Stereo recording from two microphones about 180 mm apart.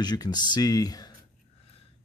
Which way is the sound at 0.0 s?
20° left (ahead or behind).